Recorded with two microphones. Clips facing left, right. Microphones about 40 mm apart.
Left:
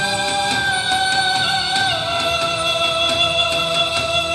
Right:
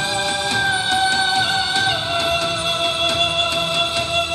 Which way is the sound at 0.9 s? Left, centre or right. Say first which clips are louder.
Left 1 dB; left.